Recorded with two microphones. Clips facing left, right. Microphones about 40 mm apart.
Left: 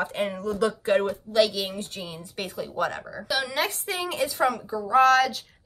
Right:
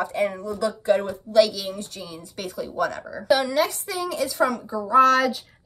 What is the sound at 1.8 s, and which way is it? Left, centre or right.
Speech, left.